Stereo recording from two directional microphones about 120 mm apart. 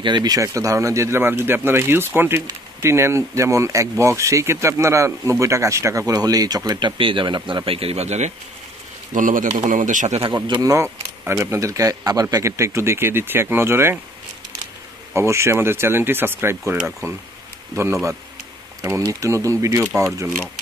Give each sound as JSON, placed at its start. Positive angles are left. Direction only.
{"t": 0.0, "sound": "speech", "side_deg": -35}
{"t": 7.0, "sound": "speech", "side_deg": -45}
{"t": 9.1, "sound": "a man's voice", "side_deg": -90}
{"t": 10.2, "sound": "speech", "side_deg": -40}
{"t": 15.1, "sound": "speech", "side_deg": -25}